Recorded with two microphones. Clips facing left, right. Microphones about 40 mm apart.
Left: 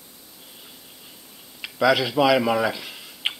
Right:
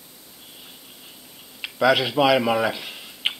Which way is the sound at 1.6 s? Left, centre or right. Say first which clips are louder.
Right 1 dB; centre.